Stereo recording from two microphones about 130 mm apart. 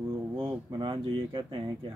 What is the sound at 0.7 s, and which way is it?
Speech, 35° right (ahead or behind).